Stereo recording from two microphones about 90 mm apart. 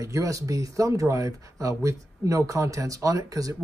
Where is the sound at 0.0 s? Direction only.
40° right (ahead or behind).